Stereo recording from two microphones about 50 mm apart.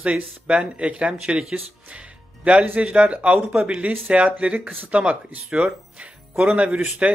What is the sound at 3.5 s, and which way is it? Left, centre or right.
Speech, centre.